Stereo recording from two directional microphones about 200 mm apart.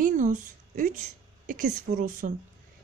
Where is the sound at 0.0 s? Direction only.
40° right (ahead or behind).